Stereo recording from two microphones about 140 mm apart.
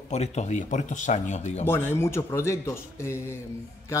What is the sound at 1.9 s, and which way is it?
Speech, 20° left (ahead or behind).